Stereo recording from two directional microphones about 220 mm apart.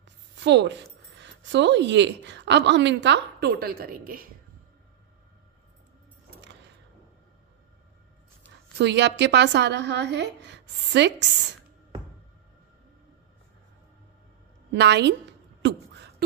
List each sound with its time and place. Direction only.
0.4 s speech: 55° right (ahead or behind)
8.7 s speech: 50° right (ahead or behind)
14.7 s speech: 50° right (ahead or behind)
15.6 s a sound: 50° right (ahead or behind)